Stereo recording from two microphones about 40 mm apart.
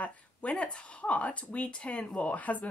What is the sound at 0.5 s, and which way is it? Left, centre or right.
Speech, left.